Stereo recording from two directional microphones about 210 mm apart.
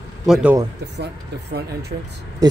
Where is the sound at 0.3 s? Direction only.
5° right (ahead or behind).